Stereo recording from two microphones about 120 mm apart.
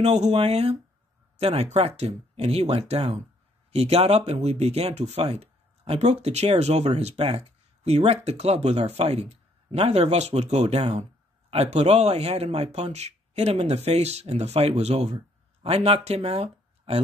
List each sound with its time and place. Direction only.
0.0 s speech: 65° right (ahead or behind)